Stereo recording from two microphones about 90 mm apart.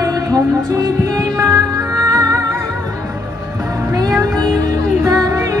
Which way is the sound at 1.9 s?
35° right (ahead or behind).